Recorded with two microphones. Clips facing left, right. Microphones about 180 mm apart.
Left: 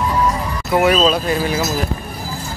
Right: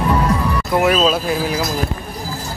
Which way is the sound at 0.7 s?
Centre (ahead or behind).